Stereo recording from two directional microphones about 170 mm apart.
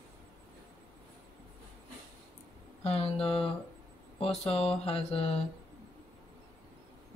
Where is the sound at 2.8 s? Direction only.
35° left (ahead or behind).